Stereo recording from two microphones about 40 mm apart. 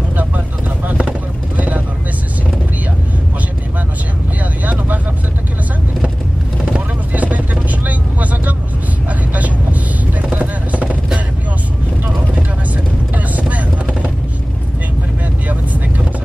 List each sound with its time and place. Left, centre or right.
7.1 s vehicle: right
10.3 s a sound: right
13.1 s vehicle: right